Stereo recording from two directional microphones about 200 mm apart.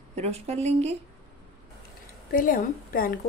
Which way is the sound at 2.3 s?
45° left (ahead or behind).